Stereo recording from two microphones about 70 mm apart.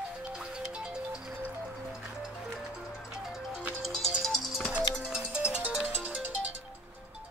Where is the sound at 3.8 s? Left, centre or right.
Centre.